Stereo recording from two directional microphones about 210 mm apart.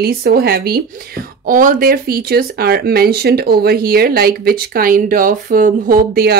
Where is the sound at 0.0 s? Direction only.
45° right (ahead or behind).